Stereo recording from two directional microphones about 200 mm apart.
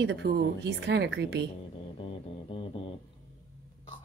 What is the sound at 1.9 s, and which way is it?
Music, 25° left (ahead or behind).